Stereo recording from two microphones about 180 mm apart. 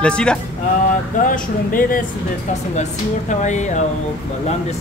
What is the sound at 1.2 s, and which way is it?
Speech, 50° left (ahead or behind).